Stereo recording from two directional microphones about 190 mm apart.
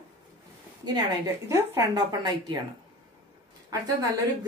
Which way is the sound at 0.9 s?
15° right (ahead or behind).